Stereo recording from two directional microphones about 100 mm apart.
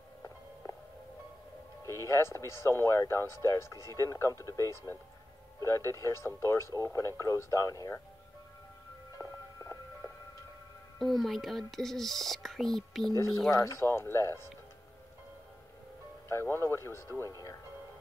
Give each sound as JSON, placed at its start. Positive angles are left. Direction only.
{"t": 1.9, "sound": "speech", "side_deg": 30}
{"t": 9.2, "sound": "music", "side_deg": 30}
{"t": 11.0, "sound": "speech", "side_deg": 0}
{"t": 13.1, "sound": "speech", "side_deg": 30}
{"t": 16.3, "sound": "speech", "side_deg": 25}